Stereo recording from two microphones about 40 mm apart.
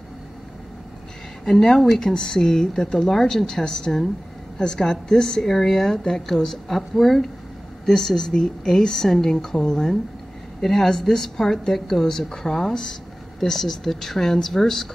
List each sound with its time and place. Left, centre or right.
1.4 s a woman's voice: centre